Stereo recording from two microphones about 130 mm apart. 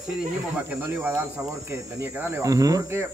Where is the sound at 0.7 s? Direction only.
15° right (ahead or behind).